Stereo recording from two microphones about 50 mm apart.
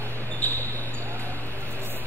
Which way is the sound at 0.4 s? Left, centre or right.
Left.